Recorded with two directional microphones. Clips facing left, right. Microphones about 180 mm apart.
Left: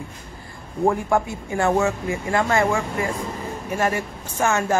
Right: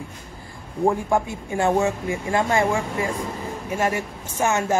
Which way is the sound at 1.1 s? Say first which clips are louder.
Left 1 dB; 15° right (ahead or behind).